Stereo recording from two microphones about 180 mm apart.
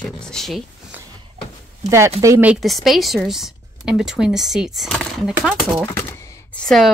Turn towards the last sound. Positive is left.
turn(degrees=5)  # may be behind; listen again after turning